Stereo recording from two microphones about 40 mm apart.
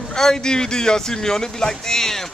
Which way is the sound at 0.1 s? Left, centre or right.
Centre.